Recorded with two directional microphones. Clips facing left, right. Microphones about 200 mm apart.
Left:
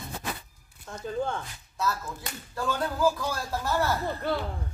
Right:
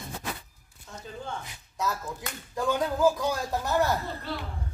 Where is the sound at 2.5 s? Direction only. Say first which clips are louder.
Right 3 dB; 15° right (ahead or behind).